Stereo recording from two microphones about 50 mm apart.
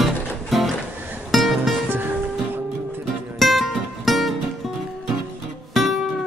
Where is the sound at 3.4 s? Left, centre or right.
Centre.